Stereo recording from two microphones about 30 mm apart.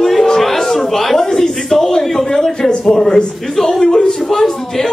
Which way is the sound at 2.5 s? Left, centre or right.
Left.